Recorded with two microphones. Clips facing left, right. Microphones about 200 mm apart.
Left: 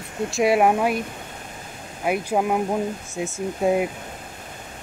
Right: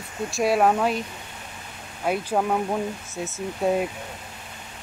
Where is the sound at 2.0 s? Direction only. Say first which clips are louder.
Left 2 dB; 10° left (ahead or behind).